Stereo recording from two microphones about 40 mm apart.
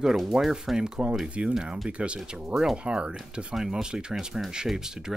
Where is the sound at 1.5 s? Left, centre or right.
Centre.